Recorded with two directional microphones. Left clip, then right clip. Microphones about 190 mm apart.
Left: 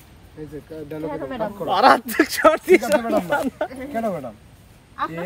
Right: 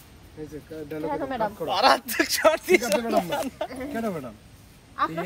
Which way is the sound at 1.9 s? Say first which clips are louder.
Left 5 dB; 50° left (ahead or behind).